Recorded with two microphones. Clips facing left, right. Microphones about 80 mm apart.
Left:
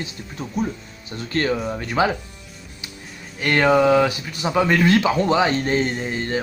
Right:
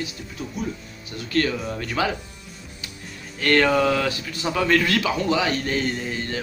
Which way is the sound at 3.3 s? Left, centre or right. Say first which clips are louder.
Left 2 dB; centre.